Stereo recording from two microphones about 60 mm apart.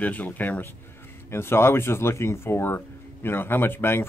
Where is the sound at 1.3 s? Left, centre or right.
Left.